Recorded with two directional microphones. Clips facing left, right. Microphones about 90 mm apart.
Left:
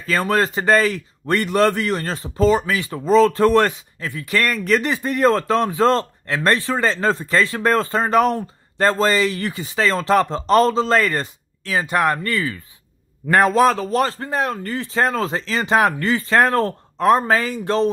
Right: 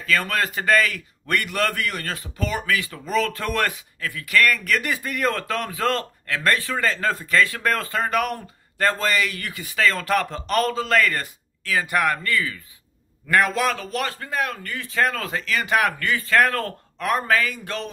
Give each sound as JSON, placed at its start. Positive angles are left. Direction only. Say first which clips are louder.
{"t": 0.0, "sound": "a man's voice", "louder": "left 4 dB", "side_deg": 30}
{"t": 13.3, "sound": "a man's voice", "louder": "left 6 dB", "side_deg": 35}